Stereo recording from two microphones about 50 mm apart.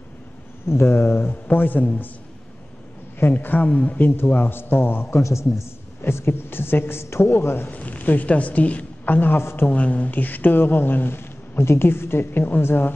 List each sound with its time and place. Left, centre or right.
0.7 s a man's voice: left
1.3 s a woman's voice: left
3.2 s a woman's voice: left
4.3 s speech: left
5.1 s speech: left
6.0 s a man's voice: left
7.7 s a woman's voice: left
9.4 s a man's voice: left
9.7 s speech: left